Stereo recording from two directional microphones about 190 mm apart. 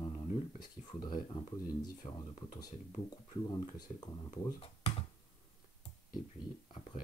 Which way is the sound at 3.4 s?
20° left (ahead or behind).